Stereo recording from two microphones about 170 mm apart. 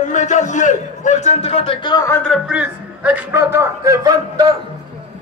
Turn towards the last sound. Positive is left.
turn(degrees=-20)  # may be behind; listen again after turning